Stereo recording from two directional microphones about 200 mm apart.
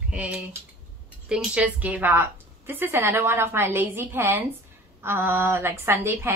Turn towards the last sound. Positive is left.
turn(degrees=-10)  # may be behind; listen again after turning